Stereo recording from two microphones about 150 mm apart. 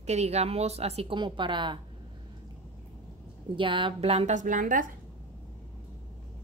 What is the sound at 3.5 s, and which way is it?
Speech, 35° right (ahead or behind).